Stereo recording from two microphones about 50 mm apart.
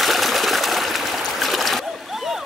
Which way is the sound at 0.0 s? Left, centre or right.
Centre.